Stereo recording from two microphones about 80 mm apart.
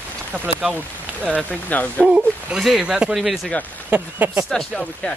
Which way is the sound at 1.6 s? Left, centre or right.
Left.